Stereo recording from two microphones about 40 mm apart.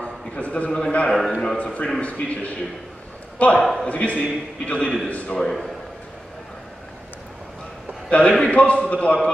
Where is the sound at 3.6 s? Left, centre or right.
Centre.